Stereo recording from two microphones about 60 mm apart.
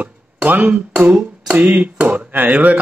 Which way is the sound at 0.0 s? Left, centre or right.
Right.